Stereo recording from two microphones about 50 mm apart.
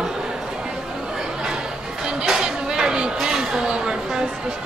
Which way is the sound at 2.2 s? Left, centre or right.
Centre.